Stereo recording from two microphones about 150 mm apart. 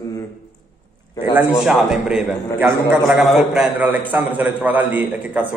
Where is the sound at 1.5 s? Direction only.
5° right (ahead or behind).